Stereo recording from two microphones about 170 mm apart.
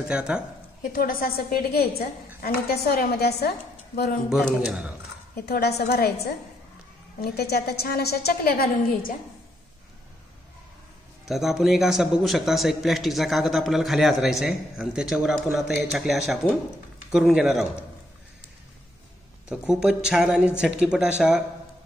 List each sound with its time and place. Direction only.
0.1 s a man's voice: 5° right (ahead or behind)
0.9 s a woman's voice: 60° left (ahead or behind)
4.3 s a man's voice: 5° right (ahead or behind)
5.3 s a woman's voice: 70° left (ahead or behind)
7.2 s a woman's voice: 65° left (ahead or behind)
11.2 s a man's voice: centre (ahead or behind)
19.5 s a man's voice: 5° right (ahead or behind)